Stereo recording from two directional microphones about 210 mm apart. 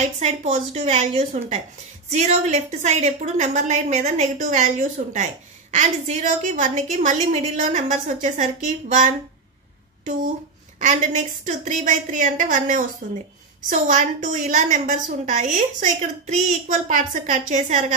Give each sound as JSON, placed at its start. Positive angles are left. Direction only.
{"t": 0.2, "sound": "a woman's voice", "side_deg": -30}
{"t": 10.8, "sound": "a woman's voice", "side_deg": -35}